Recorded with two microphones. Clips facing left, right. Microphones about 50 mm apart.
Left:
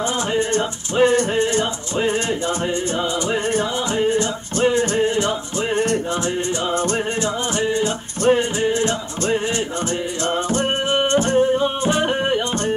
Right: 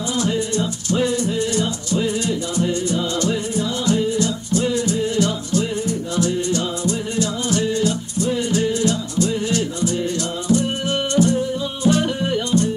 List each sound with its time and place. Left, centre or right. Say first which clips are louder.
0.3 s music: left 2 dB; left
4.0 s music: left 2 dB; left
7.2 s music: even; left
11.1 s music: left 1 dB; left
11.9 s music: right 2 dB; left